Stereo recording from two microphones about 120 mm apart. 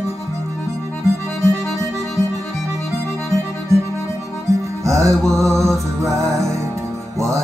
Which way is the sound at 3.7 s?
25° right (ahead or behind).